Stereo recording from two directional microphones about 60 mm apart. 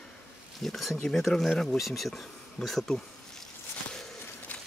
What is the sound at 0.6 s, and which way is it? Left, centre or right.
Speech, centre.